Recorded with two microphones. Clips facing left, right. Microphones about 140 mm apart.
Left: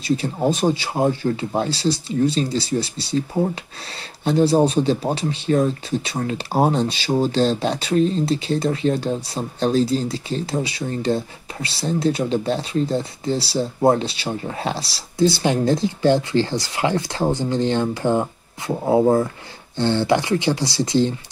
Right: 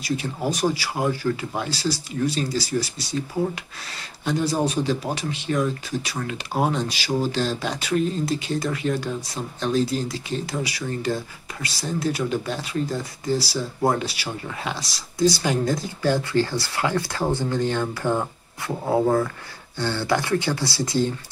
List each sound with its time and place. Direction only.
0.0 s speech: 25° left (ahead or behind)